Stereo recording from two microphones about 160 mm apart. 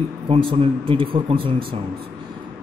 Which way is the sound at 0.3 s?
35° right (ahead or behind).